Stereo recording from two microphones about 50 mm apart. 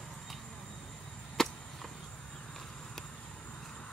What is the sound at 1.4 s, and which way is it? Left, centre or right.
Chop, centre.